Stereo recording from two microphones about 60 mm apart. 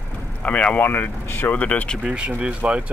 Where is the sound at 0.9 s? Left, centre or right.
Left.